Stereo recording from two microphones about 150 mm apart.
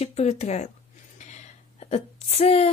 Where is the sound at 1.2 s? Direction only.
50° left (ahead or behind).